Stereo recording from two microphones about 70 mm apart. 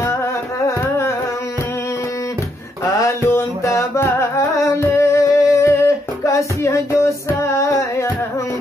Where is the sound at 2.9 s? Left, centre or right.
Left.